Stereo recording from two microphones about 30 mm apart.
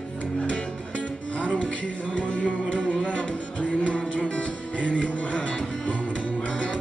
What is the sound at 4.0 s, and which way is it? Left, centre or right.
Music, left.